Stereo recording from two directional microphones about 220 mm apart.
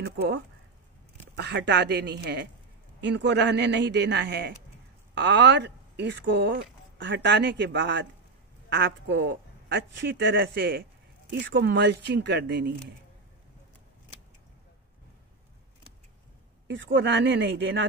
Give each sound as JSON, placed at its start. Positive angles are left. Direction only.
{"t": 0.0, "sound": "a sound", "side_deg": -50}
{"t": 1.3, "sound": "speech", "side_deg": -50}
{"t": 16.6, "sound": "speech", "side_deg": -55}